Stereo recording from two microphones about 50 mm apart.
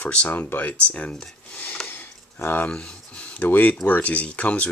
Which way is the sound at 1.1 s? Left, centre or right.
Centre.